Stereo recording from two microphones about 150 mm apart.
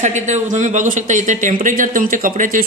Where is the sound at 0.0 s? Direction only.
55° right (ahead or behind).